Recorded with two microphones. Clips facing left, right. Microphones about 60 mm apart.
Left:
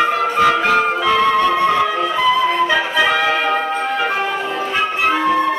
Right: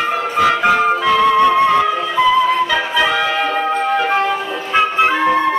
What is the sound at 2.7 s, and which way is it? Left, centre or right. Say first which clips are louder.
Music: even; centre.